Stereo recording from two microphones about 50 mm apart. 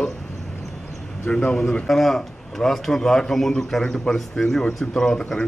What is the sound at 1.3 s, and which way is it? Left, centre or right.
Speech, centre.